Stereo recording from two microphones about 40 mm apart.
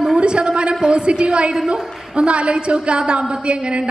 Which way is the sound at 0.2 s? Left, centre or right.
Right.